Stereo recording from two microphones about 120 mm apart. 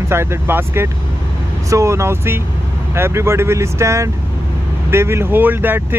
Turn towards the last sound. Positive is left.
turn(degrees=-15)  # may be behind; listen again after turning